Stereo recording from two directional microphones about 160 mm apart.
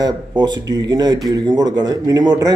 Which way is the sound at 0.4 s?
25° right (ahead or behind).